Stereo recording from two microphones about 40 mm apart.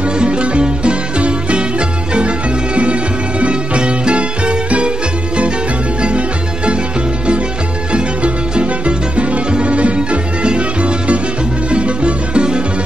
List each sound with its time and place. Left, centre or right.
0.0 s music: right
5.9 s music: right
7.9 s music: right